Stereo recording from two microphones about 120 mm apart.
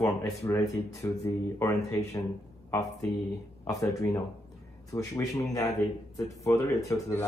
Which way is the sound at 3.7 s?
30° left (ahead or behind).